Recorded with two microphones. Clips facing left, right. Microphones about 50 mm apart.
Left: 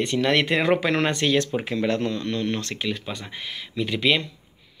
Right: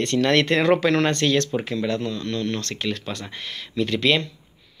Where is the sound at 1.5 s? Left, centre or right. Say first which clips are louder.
Even; left; by 4.2 s centre.